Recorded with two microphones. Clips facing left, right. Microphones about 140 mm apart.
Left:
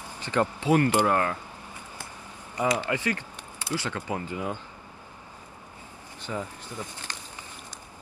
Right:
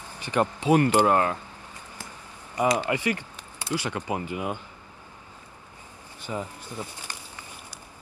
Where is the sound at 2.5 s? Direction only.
15° right (ahead or behind).